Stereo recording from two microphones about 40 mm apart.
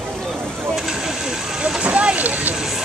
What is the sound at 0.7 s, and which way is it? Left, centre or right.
Vehicle, centre.